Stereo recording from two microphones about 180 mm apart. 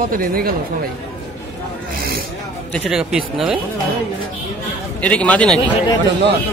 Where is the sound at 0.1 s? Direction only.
55° right (ahead or behind).